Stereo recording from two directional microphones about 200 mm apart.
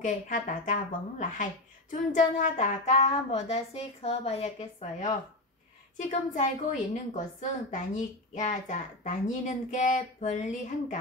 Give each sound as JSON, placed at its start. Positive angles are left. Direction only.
{"t": 0.0, "sound": "a woman's voice", "side_deg": 40}